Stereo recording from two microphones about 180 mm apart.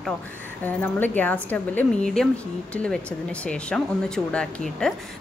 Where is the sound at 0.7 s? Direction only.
10° left (ahead or behind).